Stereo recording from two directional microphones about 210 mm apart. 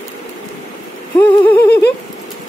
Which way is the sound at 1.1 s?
10° left (ahead or behind).